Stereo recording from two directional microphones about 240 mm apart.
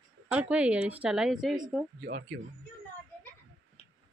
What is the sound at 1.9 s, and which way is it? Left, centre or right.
Speech, right.